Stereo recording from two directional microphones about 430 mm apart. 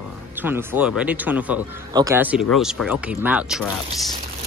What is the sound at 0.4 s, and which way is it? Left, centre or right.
Speech, centre.